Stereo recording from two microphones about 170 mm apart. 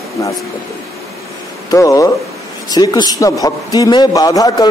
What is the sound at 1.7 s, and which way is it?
A man's voice, 20° left (ahead or behind).